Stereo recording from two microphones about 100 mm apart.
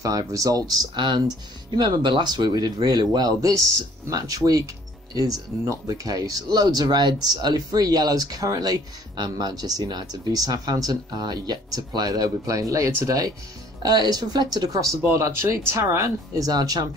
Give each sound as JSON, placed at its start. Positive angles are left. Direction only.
{"t": 0.0, "sound": "speech", "side_deg": -35}
{"t": 0.9, "sound": "speech", "side_deg": -50}
{"t": 15.0, "sound": "speech", "side_deg": -30}